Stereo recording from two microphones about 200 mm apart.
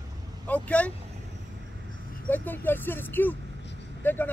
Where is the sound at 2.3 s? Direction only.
10° left (ahead or behind).